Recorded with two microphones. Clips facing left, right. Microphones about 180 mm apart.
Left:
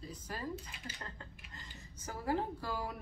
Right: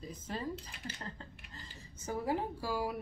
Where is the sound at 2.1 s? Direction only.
15° right (ahead or behind).